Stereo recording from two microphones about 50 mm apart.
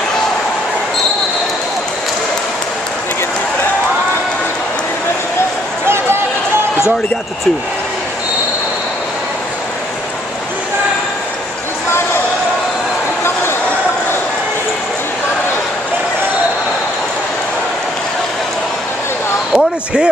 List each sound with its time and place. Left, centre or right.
5.9 s run: right
19.5 s basketball bounce: centre